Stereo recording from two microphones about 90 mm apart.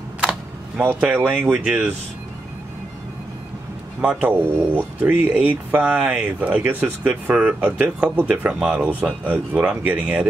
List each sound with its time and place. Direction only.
0.3 s speech: 20° right (ahead or behind)
4.0 s speech: 15° right (ahead or behind)
8.8 s speech: 20° right (ahead or behind)